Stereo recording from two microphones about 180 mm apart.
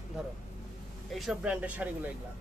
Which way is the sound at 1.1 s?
Centre (ahead or behind).